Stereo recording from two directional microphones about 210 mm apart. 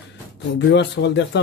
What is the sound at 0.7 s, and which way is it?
Speech, 55° left (ahead or behind).